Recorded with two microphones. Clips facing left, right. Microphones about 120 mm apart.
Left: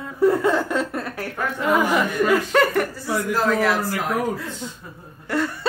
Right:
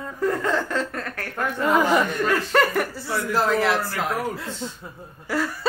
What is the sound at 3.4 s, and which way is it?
Speech, 15° right (ahead or behind).